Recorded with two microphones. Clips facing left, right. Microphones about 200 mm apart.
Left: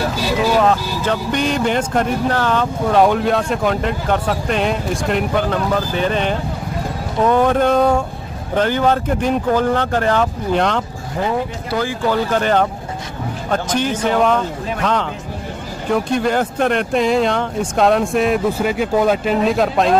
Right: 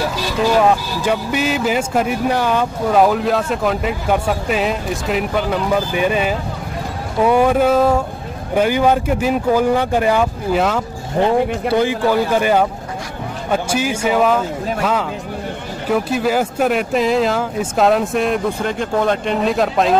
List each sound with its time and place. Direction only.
0.6 s speech: 10° right (ahead or behind)
11.7 s speech: 20° right (ahead or behind)
12.1 s speech: 10° right (ahead or behind)